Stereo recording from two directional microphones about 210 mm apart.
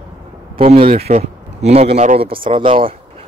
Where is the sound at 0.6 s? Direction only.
30° right (ahead or behind).